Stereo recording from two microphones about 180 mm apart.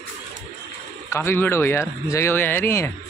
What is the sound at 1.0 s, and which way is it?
Speech, 15° left (ahead or behind).